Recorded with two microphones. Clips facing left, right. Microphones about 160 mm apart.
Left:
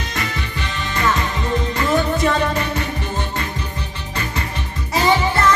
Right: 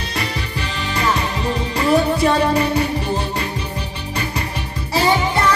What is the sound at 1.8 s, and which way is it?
Music, 30° right (ahead or behind).